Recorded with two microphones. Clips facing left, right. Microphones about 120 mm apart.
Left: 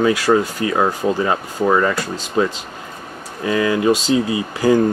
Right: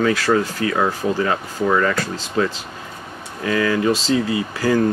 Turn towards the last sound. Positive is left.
turn(degrees=15)  # may be behind; listen again after turning